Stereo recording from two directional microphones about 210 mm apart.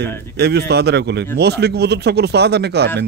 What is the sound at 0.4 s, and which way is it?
Speech, 50° right (ahead or behind).